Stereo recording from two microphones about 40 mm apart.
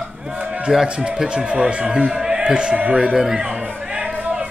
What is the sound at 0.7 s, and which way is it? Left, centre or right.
A man's voice, centre.